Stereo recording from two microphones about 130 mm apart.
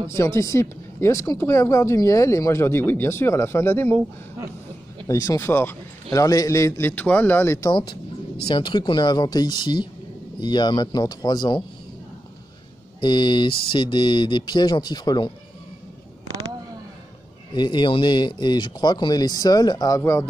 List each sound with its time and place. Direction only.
0.1 s speech: 20° left (ahead or behind)
5.0 s speech: 25° left (ahead or behind)
7.7 s speech: 40° left (ahead or behind)
13.0 s speech: 35° left (ahead or behind)
17.6 s speech: 35° left (ahead or behind)
20.0 s speech: 20° left (ahead or behind)